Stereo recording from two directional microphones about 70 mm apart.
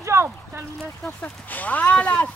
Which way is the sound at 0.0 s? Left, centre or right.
Right.